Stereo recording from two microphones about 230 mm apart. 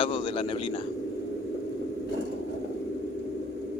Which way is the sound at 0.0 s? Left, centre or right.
Left.